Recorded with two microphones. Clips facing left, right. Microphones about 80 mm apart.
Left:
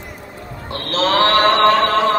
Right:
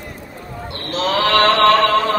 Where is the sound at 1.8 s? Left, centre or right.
Left.